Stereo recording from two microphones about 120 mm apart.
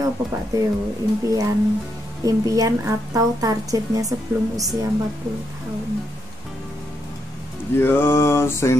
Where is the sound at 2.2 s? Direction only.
30° right (ahead or behind).